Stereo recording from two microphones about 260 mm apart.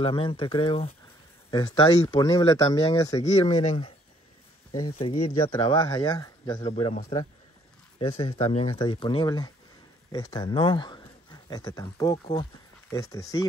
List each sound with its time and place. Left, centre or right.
0.0 s speech: left
4.9 s speech: left
8.0 s speech: left